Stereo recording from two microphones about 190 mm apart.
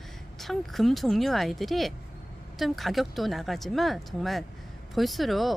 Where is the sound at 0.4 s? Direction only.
Centre (ahead or behind).